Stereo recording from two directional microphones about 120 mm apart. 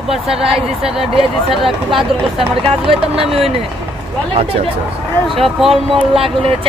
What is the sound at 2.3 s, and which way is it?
Speech, 50° right (ahead or behind).